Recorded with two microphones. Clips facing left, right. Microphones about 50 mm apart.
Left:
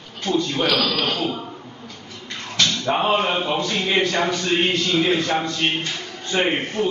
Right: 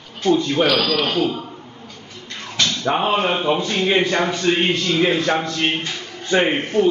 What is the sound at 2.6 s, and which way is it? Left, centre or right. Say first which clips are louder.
A man's voice: right 1 dB; centre.